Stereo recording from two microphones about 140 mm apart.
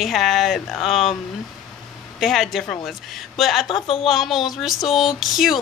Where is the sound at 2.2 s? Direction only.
Centre (ahead or behind).